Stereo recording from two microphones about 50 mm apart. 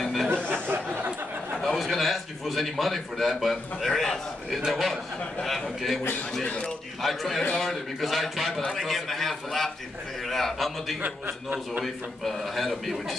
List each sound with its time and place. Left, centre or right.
0.0 s a sound: centre
0.5 s a sound: right
1.6 s a man's voice: centre
6.4 s speech: left
7.0 s a man's voice: centre
11.0 s a man's voice: right
11.8 s a man's voice: centre